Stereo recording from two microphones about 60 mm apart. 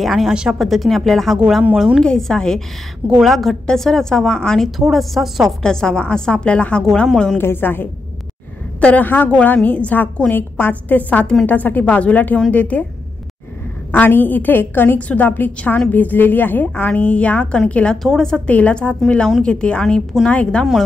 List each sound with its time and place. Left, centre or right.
0.0 s a woman's voice: centre
0.3 s speech: centre
0.6 s a woman's voice: centre
3.2 s a woman's voice: centre
4.6 s a woman's voice: centre
5.6 s a woman's voice: centre
6.8 s a woman's voice: centre
7.3 s a woman's voice: left
13.9 s a woman's voice: left
18.0 s a woman's voice: centre
18.5 s a woman's voice: left